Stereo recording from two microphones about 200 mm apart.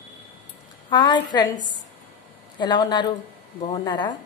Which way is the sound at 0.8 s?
20° left (ahead or behind).